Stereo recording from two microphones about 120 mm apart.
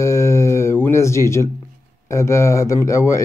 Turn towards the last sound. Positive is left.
turn(degrees=25)  # may be behind; listen again after turning